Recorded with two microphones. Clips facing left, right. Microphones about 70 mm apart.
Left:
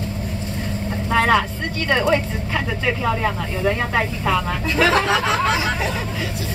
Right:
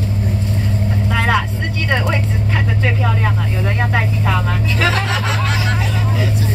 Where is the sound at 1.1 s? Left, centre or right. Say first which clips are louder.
Left 2 dB; centre.